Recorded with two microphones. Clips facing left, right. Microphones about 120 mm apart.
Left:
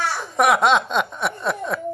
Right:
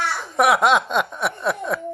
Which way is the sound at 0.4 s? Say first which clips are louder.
Even; 5° right (ahead or behind).